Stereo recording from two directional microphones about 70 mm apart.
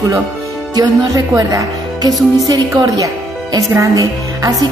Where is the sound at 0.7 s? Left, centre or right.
Right.